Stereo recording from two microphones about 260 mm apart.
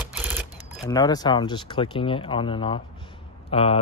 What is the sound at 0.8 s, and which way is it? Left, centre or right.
Speech, centre.